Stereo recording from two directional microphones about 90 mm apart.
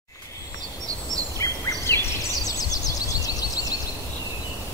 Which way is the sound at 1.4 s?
35° left (ahead or behind).